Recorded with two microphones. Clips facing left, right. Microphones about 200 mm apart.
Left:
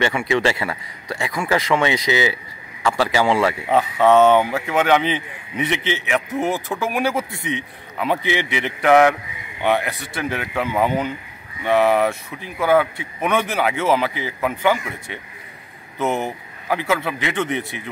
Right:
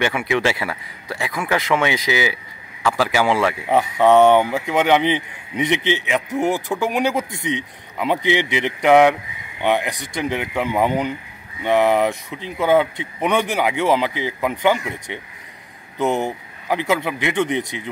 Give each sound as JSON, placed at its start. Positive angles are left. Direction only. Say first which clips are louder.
{"t": 0.3, "sound": "speech", "louder": "left 1 dB", "side_deg": -5}
{"t": 3.6, "sound": "speech", "louder": "right 2 dB", "side_deg": -15}